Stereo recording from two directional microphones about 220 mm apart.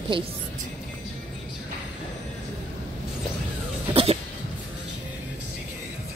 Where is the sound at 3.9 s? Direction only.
25° right (ahead or behind).